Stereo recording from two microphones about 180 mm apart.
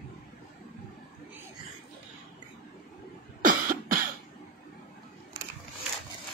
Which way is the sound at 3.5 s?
55° right (ahead or behind).